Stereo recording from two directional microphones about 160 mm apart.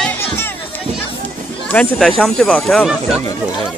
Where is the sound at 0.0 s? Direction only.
15° left (ahead or behind).